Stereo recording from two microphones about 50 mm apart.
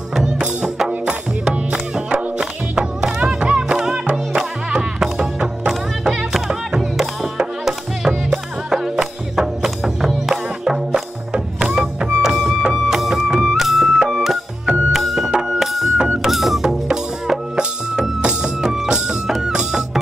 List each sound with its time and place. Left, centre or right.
0.4 s music: centre
8.6 s music: centre